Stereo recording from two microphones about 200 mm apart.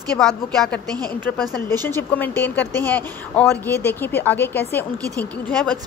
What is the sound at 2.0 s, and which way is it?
Speech, 10° left (ahead or behind).